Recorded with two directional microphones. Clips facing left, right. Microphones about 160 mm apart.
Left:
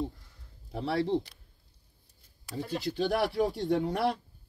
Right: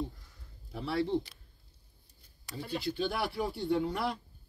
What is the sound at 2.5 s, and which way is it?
Speech, 5° left (ahead or behind).